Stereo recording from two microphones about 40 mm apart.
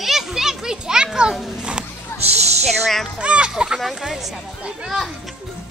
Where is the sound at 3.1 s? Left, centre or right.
Right.